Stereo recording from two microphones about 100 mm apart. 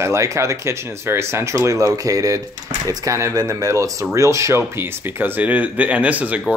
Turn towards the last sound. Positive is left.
turn(degrees=-15)  # may be behind; listen again after turning